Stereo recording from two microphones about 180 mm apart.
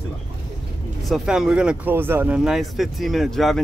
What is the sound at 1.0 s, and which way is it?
Speech, centre (ahead or behind).